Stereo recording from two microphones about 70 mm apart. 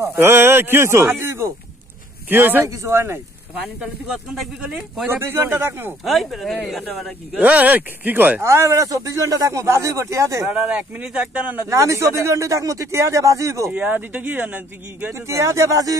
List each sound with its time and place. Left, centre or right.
0.0 s a man's voice: right
2.2 s a man's voice: right
2.6 s speech: right
3.8 s speech: centre
5.1 s speech: right
6.0 s speech: centre
7.3 s speech: right
8.5 s speech: right
10.4 s speech: right
11.7 s speech: right
13.7 s speech: right
15.1 s speech: right